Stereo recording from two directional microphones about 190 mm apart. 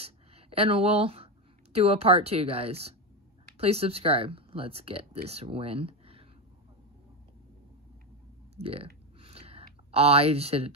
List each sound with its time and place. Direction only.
0.0 s speech: 30° right (ahead or behind)
8.5 s speech: 30° right (ahead or behind)
9.2 s a sound: 30° right (ahead or behind)